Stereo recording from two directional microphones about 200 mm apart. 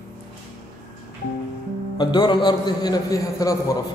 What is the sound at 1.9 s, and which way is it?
A man's voice, 20° left (ahead or behind).